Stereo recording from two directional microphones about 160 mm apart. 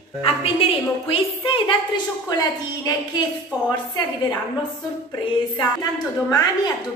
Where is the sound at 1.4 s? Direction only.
30° left (ahead or behind).